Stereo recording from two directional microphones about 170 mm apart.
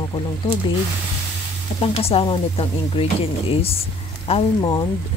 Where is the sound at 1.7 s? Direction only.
35° left (ahead or behind).